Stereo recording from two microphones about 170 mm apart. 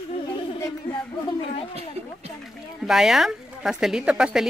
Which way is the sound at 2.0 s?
40° right (ahead or behind).